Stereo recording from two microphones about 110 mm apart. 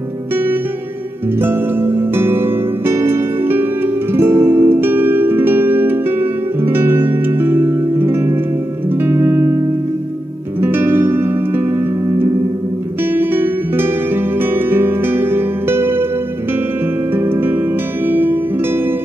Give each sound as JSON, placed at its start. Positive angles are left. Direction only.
{"t": 1.4, "sound": "music", "side_deg": -20}
{"t": 10.6, "sound": "music", "side_deg": -20}
{"t": 13.1, "sound": "music", "side_deg": -20}
{"t": 17.1, "sound": "music", "side_deg": -20}